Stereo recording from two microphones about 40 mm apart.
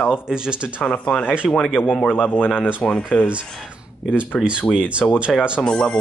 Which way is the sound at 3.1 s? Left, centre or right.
Centre.